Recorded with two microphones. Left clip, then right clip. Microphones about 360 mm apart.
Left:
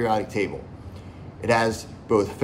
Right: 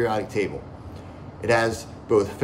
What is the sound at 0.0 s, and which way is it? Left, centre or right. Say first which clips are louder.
A man's voice: even; centre.